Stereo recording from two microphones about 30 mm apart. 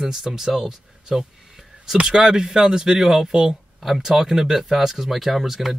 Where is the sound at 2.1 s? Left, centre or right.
Right; by 5.8 s centre.